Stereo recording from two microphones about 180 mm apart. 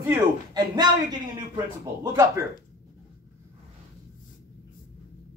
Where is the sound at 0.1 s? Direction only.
20° right (ahead or behind).